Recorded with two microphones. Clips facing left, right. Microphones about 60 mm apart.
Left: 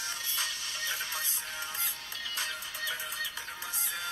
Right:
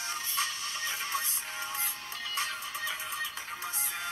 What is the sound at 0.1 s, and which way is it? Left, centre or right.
Music, right.